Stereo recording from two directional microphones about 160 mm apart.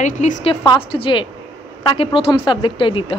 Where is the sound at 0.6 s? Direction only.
30° left (ahead or behind).